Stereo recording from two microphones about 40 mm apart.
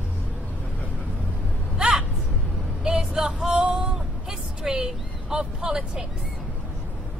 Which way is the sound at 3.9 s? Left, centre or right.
Centre.